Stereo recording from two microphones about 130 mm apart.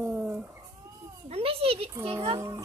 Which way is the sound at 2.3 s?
25° right (ahead or behind).